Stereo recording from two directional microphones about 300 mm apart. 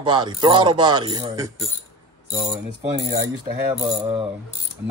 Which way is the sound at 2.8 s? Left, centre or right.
Centre.